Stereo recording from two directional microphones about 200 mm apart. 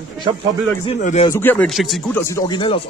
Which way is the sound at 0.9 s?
40° left (ahead or behind).